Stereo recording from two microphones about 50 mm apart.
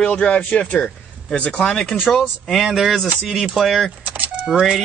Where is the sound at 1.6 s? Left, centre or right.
Centre.